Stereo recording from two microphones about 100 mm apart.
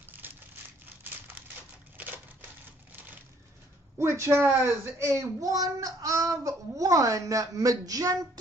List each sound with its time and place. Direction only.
4.0 s a child's voice: 25° right (ahead or behind)